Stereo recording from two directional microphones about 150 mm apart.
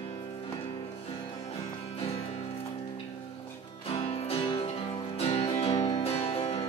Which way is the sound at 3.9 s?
35° left (ahead or behind).